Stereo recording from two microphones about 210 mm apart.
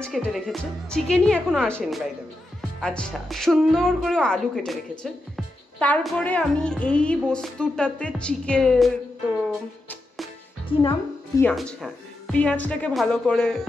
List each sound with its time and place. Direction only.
0.0 s a woman's voice: centre (ahead or behind)
10.7 s a woman's voice: 25° left (ahead or behind)
11.4 s a woman's voice: centre (ahead or behind)